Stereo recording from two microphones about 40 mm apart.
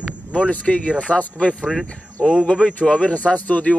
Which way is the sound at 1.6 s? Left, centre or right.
Right.